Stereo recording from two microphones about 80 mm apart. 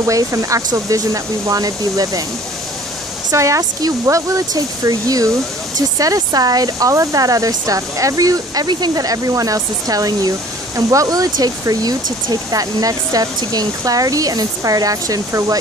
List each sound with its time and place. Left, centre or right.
0.0 s speech: right
3.3 s speech: right